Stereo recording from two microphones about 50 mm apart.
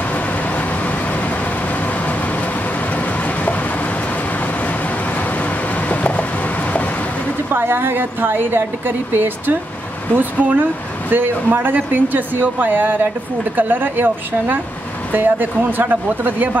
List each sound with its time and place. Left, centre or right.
0.1 s vehicle: left
2.9 s vehicle: left
4.6 s a sound: left
7.5 s a woman's voice: right